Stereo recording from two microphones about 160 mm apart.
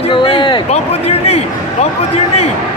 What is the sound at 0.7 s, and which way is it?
Speech, 40° left (ahead or behind).